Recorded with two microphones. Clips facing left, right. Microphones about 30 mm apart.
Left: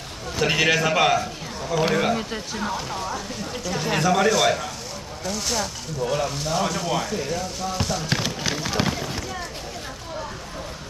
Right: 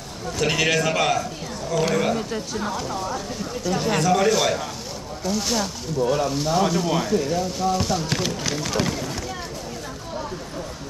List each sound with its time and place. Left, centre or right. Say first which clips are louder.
0.4 s a man's voice: left 1 dB; centre
6.0 s a man's voice: right 2 dB; centre